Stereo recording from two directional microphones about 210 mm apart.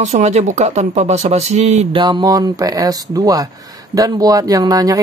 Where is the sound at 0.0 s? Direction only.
35° right (ahead or behind).